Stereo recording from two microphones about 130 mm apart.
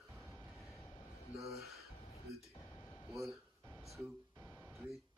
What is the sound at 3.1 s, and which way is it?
Speech, centre (ahead or behind).